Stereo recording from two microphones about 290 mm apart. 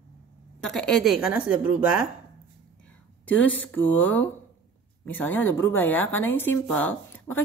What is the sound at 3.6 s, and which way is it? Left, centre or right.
Speech, centre.